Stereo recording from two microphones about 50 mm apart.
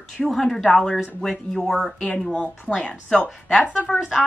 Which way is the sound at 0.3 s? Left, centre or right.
Centre.